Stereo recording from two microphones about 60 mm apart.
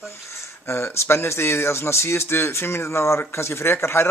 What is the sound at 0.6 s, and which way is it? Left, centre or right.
Speech, left.